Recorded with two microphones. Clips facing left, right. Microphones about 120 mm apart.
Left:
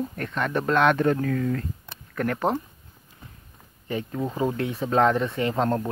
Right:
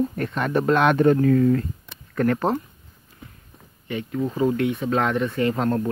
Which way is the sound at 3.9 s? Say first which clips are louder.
Right 2 dB; 30° left (ahead or behind).